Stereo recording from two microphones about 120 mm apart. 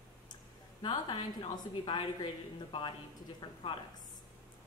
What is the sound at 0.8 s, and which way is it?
A woman's voice, 40° left (ahead or behind).